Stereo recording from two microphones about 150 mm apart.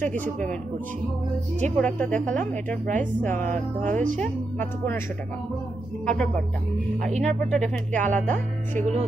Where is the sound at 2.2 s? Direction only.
60° right (ahead or behind).